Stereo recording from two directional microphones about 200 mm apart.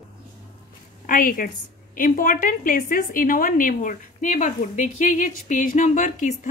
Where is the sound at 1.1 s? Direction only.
45° left (ahead or behind).